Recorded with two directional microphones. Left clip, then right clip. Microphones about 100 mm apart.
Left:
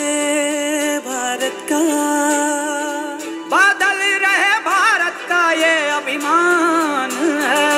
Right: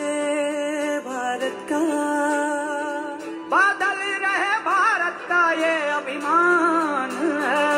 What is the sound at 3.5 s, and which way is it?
Music, 25° left (ahead or behind).